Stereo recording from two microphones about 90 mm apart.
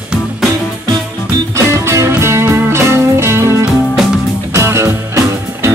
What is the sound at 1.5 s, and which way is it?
Music, 30° right (ahead or behind).